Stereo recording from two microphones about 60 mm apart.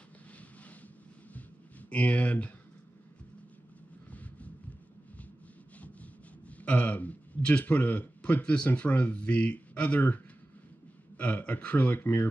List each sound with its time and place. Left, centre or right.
1.9 s speech: left
4.1 s vehicle: left
6.6 s a man's voice: left